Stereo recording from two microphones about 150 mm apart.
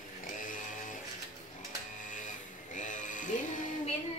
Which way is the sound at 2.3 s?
55° left (ahead or behind).